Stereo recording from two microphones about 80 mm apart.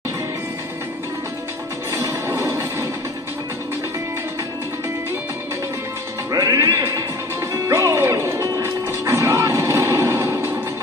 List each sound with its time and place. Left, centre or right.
1.9 s music: right
6.3 s music: right